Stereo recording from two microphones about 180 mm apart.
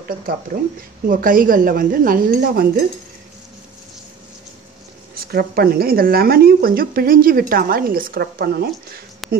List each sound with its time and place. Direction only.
1.0 s speech: 50° right (ahead or behind)
5.1 s speech: 55° right (ahead or behind)
9.2 s a sound: centre (ahead or behind)